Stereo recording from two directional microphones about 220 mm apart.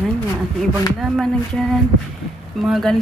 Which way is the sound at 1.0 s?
Centre (ahead or behind).